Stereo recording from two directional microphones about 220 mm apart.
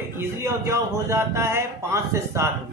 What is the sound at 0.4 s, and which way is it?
A man's voice, 15° right (ahead or behind).